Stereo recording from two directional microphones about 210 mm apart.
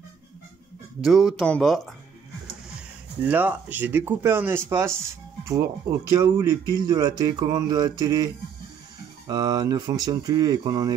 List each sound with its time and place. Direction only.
1.0 s speech: centre (ahead or behind)
3.3 s speech: 10° right (ahead or behind)
9.3 s speech: 20° right (ahead or behind)